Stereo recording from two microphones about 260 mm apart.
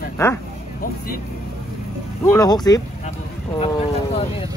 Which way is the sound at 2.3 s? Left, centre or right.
Centre.